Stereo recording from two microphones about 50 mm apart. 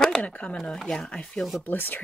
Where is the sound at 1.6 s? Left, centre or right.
Left.